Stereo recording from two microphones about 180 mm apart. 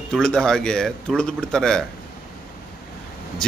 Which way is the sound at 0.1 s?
5° left (ahead or behind).